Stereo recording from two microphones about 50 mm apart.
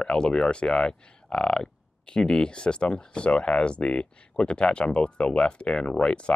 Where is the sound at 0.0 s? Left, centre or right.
Centre.